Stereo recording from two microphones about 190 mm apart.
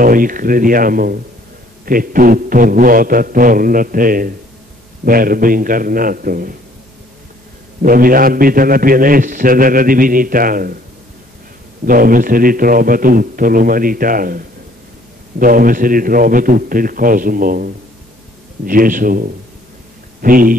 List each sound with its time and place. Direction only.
0.0 s a man's voice: 45° right (ahead or behind)
7.8 s a man's voice: 50° right (ahead or behind)
11.8 s a man's voice: 45° right (ahead or behind)
18.7 s a man's voice: 45° right (ahead or behind)